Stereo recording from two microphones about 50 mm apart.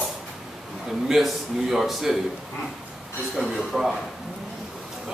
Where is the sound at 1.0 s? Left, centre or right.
Centre.